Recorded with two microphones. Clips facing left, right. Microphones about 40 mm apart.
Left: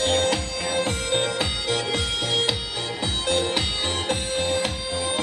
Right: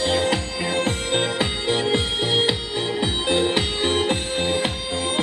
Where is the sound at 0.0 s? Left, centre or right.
Right.